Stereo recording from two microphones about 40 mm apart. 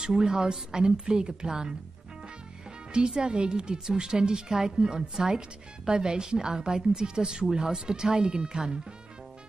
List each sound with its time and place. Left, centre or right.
0.0 s speech: centre
2.9 s a woman's voice: right